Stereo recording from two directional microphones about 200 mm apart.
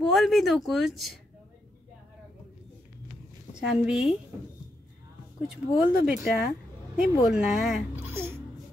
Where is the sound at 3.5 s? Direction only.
5° right (ahead or behind).